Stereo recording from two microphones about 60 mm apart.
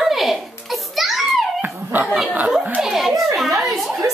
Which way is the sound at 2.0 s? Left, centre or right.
Centre.